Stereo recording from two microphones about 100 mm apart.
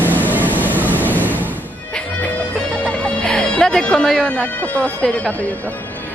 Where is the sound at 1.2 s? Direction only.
15° right (ahead or behind).